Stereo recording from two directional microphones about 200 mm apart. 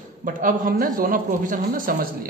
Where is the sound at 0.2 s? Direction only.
40° right (ahead or behind).